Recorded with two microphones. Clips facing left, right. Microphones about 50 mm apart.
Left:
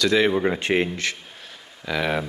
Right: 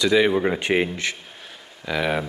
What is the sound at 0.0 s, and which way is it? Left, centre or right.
Speech, centre.